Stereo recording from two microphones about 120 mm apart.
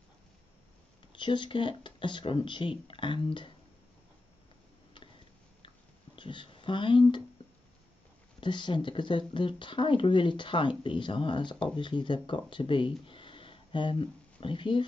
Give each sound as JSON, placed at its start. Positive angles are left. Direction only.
{"t": 1.1, "sound": "speech", "side_deg": 40}
{"t": 6.1, "sound": "speech", "side_deg": 45}
{"t": 8.4, "sound": "speech", "side_deg": 40}